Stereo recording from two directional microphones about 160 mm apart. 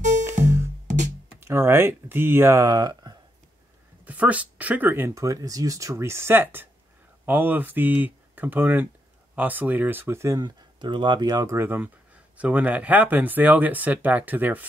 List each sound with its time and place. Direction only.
0.2 s music: 15° right (ahead or behind)
1.4 s speech: 15° right (ahead or behind)
4.0 s speech: 10° right (ahead or behind)